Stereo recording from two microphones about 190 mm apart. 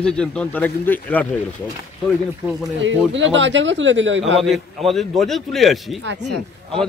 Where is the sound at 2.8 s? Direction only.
80° right.